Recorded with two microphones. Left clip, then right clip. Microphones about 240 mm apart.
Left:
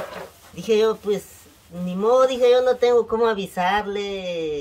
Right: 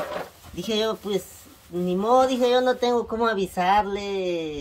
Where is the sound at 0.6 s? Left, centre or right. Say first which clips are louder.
Left 6 dB; centre.